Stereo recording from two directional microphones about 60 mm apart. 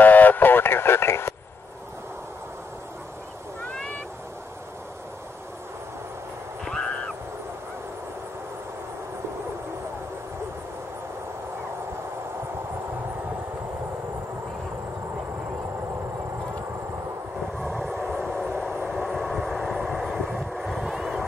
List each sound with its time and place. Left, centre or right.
0.0 s radio: left
6.6 s vehicle: centre
17.6 s vehicle: centre